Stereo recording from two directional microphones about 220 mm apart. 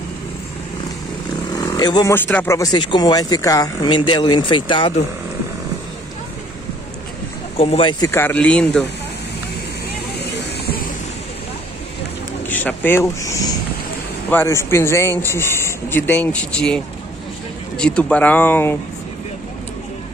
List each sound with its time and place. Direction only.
1.5 s speech: 15° left (ahead or behind)
7.5 s speech: 25° left (ahead or behind)
8.1 s speech: 10° left (ahead or behind)
12.4 s speech: 10° left (ahead or behind)